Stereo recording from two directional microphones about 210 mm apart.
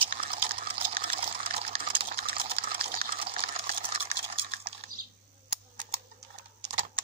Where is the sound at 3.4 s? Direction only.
30° right (ahead or behind).